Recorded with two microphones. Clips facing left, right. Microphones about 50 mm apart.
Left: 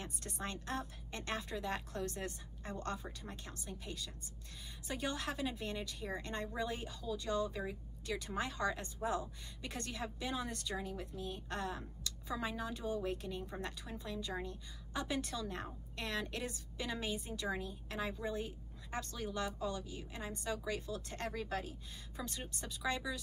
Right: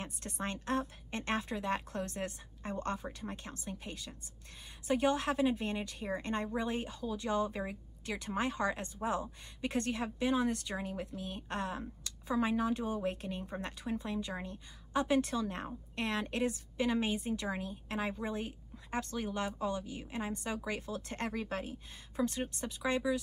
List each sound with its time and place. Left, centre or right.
0.0 s speech: right